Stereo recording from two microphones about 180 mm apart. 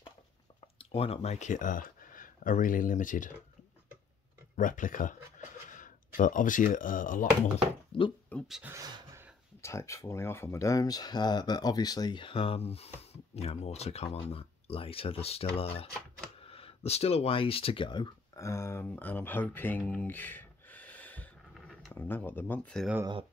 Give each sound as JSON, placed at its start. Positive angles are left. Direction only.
{"t": 0.7, "sound": "speech", "side_deg": 30}
{"t": 4.6, "sound": "speech", "side_deg": 45}
{"t": 7.9, "sound": "speech", "side_deg": 30}
{"t": 8.3, "sound": "speech", "side_deg": 0}
{"t": 8.7, "sound": "a sound", "side_deg": -15}
{"t": 9.6, "sound": "speech", "side_deg": 15}
{"t": 16.3, "sound": "a sound", "side_deg": 30}
{"t": 21.9, "sound": "speech", "side_deg": 10}